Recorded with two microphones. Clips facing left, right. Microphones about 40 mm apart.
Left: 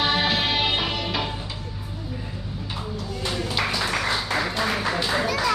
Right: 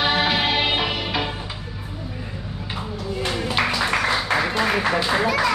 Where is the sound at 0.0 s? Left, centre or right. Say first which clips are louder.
Right 2 dB; centre.